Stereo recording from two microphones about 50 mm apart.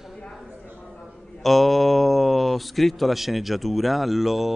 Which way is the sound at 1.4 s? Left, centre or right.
Centre.